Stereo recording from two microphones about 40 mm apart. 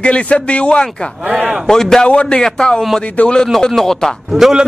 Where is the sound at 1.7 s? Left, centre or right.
Centre.